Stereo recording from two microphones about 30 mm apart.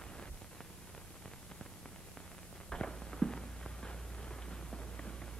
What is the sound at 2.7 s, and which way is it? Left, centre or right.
Walk, left.